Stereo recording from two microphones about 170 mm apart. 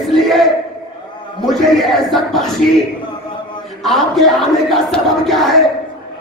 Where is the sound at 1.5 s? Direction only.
Centre (ahead or behind).